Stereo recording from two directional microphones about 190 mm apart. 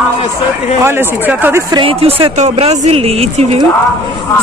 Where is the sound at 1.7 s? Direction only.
30° right (ahead or behind).